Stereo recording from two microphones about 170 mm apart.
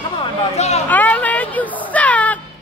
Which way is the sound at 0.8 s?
10° left (ahead or behind).